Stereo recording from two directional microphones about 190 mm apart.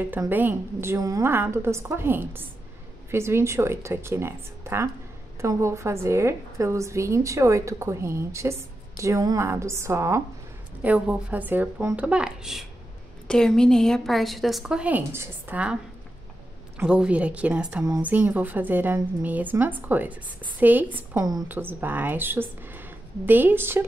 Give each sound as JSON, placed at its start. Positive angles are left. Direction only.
{"t": 0.0, "sound": "a woman's voice", "side_deg": -10}